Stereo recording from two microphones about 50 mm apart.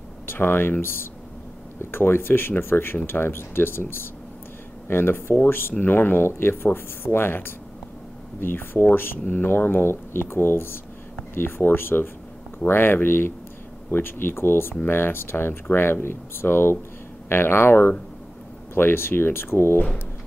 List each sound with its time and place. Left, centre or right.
0.3 s speech: left